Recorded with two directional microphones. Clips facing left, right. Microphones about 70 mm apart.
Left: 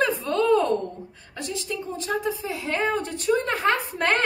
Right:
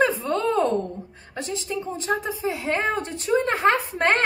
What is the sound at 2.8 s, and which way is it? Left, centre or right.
Speech, centre.